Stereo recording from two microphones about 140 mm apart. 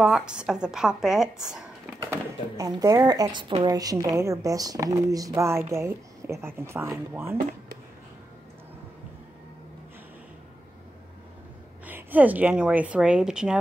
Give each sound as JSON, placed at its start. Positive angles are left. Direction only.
{"t": 0.0, "sound": "a woman's voice", "side_deg": -5}
{"t": 2.0, "sound": "speech", "side_deg": -25}
{"t": 11.8, "sound": "a woman's voice", "side_deg": -10}